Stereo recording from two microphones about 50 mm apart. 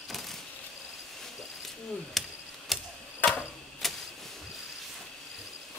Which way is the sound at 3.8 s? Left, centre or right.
Centre.